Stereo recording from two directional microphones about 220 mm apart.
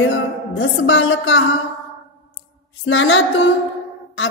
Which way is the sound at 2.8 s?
60° left (ahead or behind).